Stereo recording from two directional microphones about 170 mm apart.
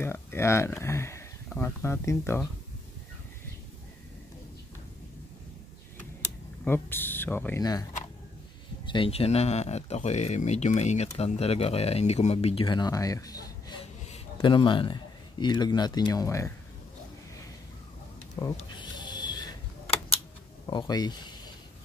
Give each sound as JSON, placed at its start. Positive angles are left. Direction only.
{"t": 0.0, "sound": "speech", "side_deg": 15}
{"t": 6.6, "sound": "speech", "side_deg": 10}
{"t": 8.8, "sound": "a man's voice", "side_deg": 30}
{"t": 18.3, "sound": "a sound", "side_deg": 25}
{"t": 20.6, "sound": "speech", "side_deg": 25}